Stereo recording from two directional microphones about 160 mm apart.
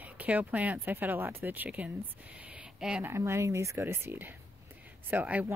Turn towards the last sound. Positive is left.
turn(degrees=-10)  # may be behind; listen again after turning